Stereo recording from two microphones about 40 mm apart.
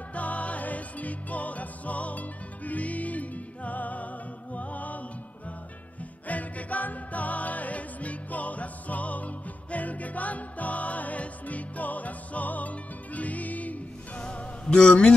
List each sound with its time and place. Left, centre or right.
0.1 s music: left
6.2 s music: left
14.2 s music: left